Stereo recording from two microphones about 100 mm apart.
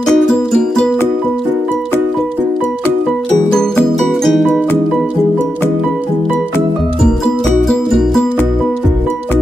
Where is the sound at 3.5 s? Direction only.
5° left (ahead or behind).